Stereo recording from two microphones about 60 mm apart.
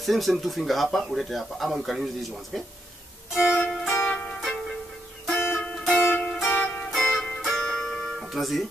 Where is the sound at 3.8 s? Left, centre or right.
Centre.